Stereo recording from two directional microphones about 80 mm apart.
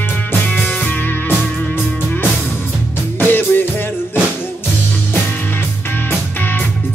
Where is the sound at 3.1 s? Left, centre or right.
Left.